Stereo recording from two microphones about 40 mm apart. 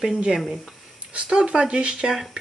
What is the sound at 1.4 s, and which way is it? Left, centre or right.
Speech, right.